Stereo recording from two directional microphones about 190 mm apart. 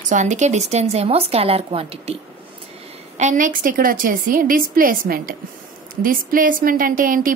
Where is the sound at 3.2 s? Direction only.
40° right (ahead or behind).